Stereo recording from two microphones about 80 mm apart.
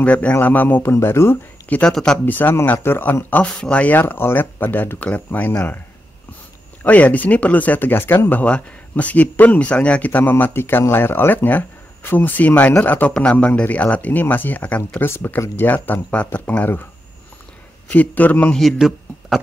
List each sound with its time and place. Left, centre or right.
0.0 s speech: centre
1.7 s speech: centre
2.2 s speech: left
6.8 s speech: centre
17.9 s speech: left
18.5 s speech: centre